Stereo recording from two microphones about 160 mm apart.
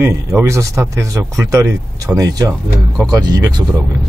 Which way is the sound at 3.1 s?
25° right (ahead or behind).